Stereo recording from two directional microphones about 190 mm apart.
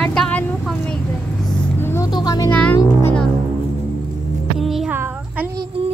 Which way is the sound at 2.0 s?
20° left (ahead or behind).